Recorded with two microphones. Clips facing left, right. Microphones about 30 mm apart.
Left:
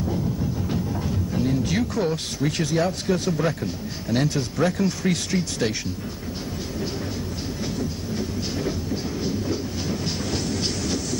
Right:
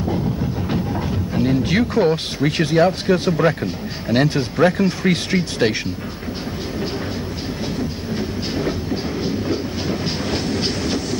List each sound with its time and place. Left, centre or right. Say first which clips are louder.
0.7 s speech: right 4 dB; right
8.2 s train: right 4 dB; right